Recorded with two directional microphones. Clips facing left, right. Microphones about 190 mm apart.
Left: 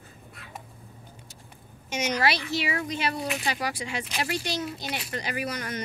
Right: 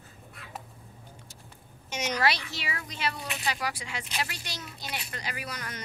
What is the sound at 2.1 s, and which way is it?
Speech, 5° left (ahead or behind).